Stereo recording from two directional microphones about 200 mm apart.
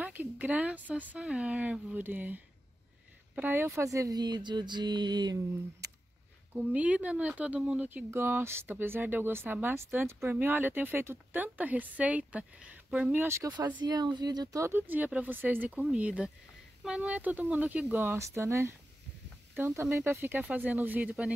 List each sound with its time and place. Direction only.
0.0 s speech: 5° right (ahead or behind)
6.5 s speech: 5° right (ahead or behind)